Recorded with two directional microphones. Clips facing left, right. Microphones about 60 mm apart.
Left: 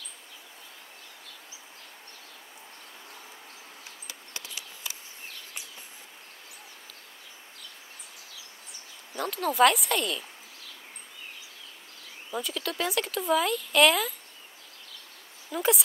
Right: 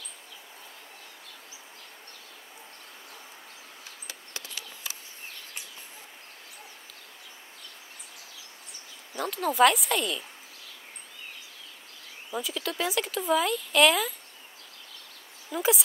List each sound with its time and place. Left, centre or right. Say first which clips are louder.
9.1 s speech: even; centre
12.3 s speech: even; centre
15.5 s speech: even; centre